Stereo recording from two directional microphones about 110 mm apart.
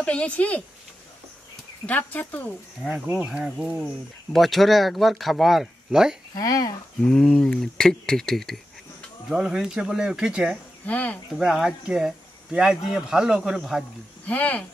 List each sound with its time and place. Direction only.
0.0 s speech: 10° left (ahead or behind)
1.9 s speech: 15° left (ahead or behind)
2.8 s speech: 10° right (ahead or behind)
6.3 s speech: 35° left (ahead or behind)
7.0 s speech: 5° left (ahead or behind)
10.9 s speech: 15° left (ahead or behind)
11.3 s speech: 5° right (ahead or behind)
14.2 s speech: 15° left (ahead or behind)